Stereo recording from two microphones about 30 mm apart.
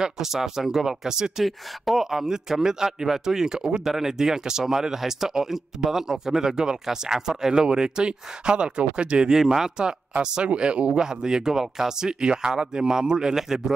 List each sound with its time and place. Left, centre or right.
0.0 s speech: centre
1.4 s speech: centre; by 9.3 s right
9.3 s speech: centre
10.4 s speech: right
11.0 s speech: right